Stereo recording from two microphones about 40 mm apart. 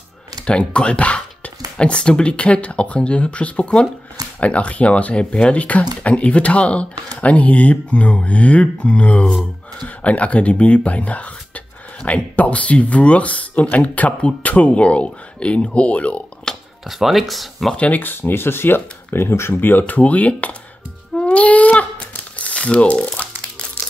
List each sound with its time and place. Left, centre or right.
0.5 s speech: left
16.5 s a sound: centre
16.8 s speech: centre
17.9 s speech: left
19.5 s speech: left
19.9 s speech: left
21.2 s a sound: left